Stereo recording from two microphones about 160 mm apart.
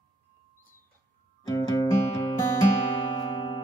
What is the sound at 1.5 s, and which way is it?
Music, 25° left (ahead or behind).